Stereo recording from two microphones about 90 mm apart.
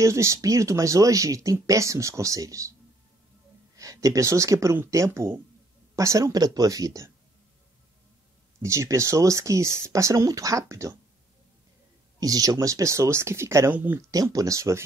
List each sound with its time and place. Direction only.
0.0 s speech: 35° right (ahead or behind)
3.7 s speech: 40° right (ahead or behind)
8.6 s speech: 35° right (ahead or behind)
12.2 s speech: 45° right (ahead or behind)
13.7 s speech: 20° right (ahead or behind)
14.1 s speech: 40° right (ahead or behind)